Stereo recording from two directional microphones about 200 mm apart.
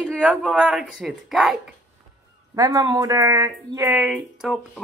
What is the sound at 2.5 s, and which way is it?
Speech, 20° right (ahead or behind).